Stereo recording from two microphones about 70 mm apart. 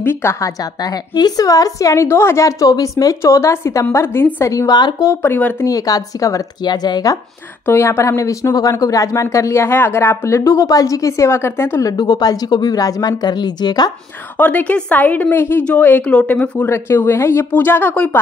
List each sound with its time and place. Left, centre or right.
0.0 s speech: left
1.1 s speech: left
2.7 s speech: left
4.5 s speech: left
5.2 s speech: left
5.7 s a woman's voice: left
6.6 s speech: left
7.6 s speech: left
12.0 s speech: left
14.4 s a woman's voice: left
16.6 s speech: left